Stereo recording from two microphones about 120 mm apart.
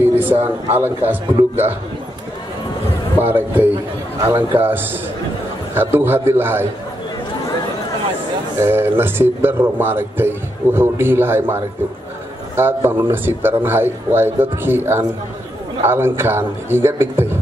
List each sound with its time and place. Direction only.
0.3 s speech: 20° right (ahead or behind)
3.2 s speech: 15° right (ahead or behind)
8.5 s a man's voice: 20° right (ahead or behind)